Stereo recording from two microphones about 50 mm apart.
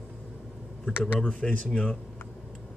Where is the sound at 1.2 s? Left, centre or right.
Centre.